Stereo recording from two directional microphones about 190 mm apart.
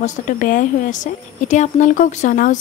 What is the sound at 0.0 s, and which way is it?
Speech, 45° left (ahead or behind).